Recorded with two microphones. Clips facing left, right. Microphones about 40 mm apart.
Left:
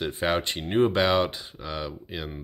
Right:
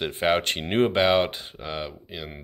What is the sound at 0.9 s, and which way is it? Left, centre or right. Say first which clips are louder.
Speech: right 2 dB; right.